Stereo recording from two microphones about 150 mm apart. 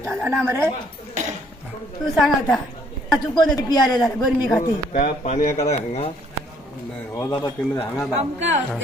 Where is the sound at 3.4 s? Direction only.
30° left (ahead or behind).